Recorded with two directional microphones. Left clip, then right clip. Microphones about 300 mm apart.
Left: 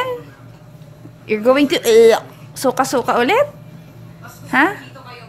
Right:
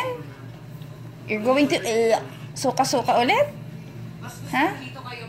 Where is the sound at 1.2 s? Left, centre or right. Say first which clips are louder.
Left 6 dB; left.